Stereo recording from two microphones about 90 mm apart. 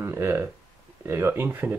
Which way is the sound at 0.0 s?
25° right (ahead or behind).